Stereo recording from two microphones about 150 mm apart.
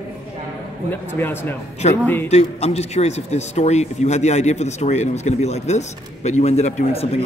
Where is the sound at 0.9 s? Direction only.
15° left (ahead or behind).